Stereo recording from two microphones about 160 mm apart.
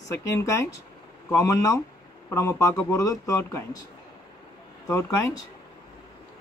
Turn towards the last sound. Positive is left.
turn(degrees=20)  # may be behind; listen again after turning